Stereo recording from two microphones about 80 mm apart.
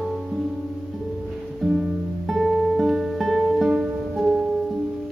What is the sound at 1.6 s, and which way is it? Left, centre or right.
Music, centre.